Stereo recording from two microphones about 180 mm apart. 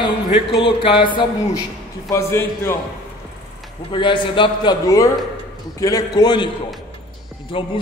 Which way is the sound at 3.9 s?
25° left (ahead or behind).